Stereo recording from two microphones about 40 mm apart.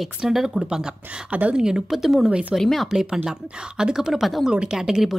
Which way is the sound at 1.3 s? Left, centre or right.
Right.